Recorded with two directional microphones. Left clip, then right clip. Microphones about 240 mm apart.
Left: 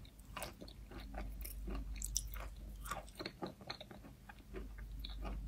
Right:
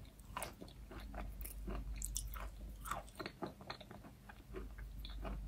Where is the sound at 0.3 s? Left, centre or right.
Centre.